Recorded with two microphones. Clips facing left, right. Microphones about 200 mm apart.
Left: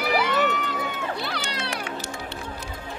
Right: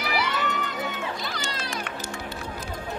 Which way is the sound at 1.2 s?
60° left (ahead or behind).